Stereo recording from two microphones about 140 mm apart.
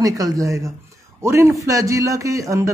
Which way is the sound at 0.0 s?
25° right (ahead or behind).